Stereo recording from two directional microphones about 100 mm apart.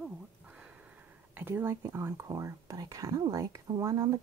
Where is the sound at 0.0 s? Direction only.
10° right (ahead or behind).